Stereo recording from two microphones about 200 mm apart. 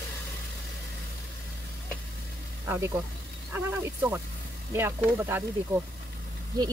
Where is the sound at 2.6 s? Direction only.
10° right (ahead or behind).